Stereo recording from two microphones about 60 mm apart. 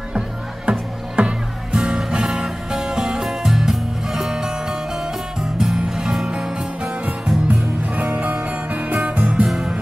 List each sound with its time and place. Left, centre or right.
0.7 s music: centre